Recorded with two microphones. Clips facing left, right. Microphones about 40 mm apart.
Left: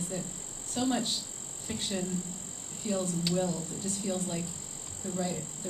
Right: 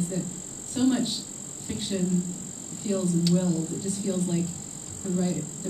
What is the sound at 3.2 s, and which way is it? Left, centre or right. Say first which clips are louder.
Speech: right 6 dB; centre.